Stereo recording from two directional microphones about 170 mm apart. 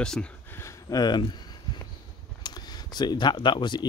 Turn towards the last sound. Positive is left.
turn(degrees=25)  # may be behind; listen again after turning